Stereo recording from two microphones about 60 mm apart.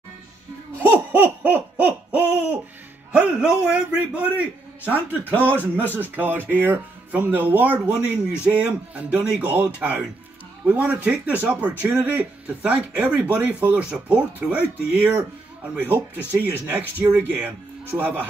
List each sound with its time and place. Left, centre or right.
0.8 s hoot: right
3.1 s a sound: centre
5.4 s speech: right